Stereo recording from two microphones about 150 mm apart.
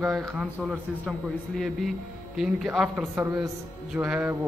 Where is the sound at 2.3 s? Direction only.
5° right (ahead or behind).